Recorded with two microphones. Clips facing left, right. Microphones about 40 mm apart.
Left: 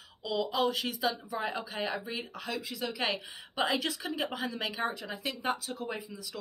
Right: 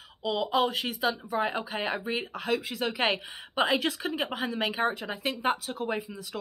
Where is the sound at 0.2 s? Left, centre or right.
Right.